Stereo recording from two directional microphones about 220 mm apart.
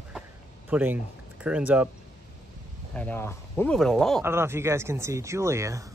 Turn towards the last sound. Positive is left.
turn(degrees=-15)  # may be behind; listen again after turning